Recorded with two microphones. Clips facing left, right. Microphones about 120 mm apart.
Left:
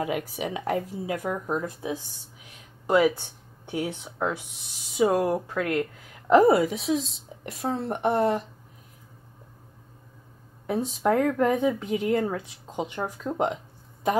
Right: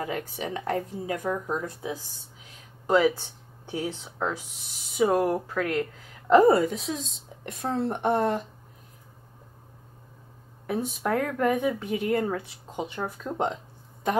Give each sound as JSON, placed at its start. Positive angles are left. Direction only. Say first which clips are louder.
{"t": 0.0, "sound": "speech", "louder": "left 3 dB", "side_deg": 10}
{"t": 1.9, "sound": "a woman's voice", "louder": "left 2 dB", "side_deg": 20}
{"t": 11.1, "sound": "a woman's voice", "louder": "left 3 dB", "side_deg": 15}
{"t": 13.2, "sound": "a woman's voice", "louder": "left 2 dB", "side_deg": 5}